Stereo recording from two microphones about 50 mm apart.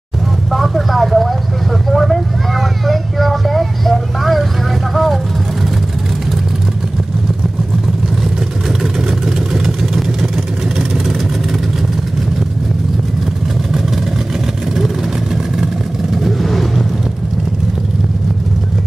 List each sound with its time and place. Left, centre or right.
0.5 s vehicle: centre
8.2 s vehicle: centre
15.3 s vehicle: centre